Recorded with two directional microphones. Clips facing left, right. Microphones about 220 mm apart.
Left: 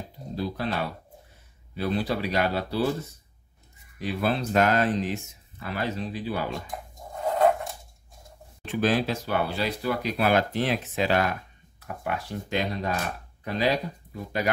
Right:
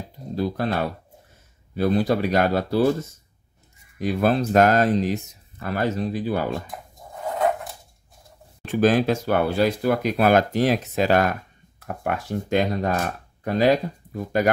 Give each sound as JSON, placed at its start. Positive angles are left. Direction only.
{"t": 0.4, "sound": "speech", "side_deg": -50}
{"t": 8.6, "sound": "speech", "side_deg": -45}